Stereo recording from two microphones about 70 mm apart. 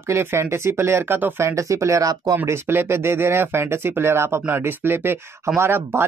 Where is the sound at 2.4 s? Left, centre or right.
Right.